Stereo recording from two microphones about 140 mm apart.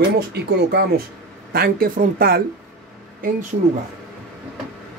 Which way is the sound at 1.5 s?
90° right.